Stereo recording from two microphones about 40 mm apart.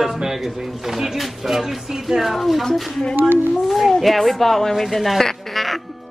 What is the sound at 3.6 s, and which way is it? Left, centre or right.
Speech, centre.